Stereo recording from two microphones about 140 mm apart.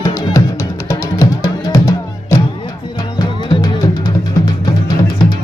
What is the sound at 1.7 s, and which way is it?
Music, 25° left (ahead or behind).